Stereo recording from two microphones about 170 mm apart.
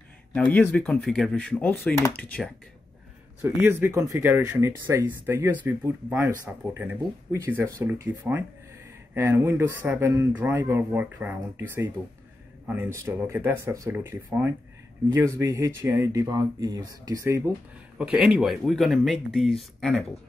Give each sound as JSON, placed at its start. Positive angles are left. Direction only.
{"t": 0.3, "sound": "speech", "side_deg": 10}
{"t": 3.4, "sound": "speech", "side_deg": -15}
{"t": 17.9, "sound": "speech", "side_deg": -5}